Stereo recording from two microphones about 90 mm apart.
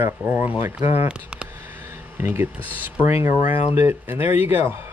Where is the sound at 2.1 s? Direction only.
25° right (ahead or behind).